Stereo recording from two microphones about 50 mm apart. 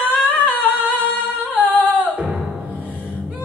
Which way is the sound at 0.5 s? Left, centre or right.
Right.